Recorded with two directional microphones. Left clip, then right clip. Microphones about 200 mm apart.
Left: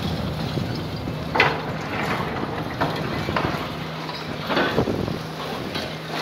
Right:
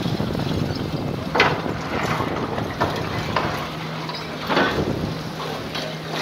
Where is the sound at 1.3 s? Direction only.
60° right (ahead or behind).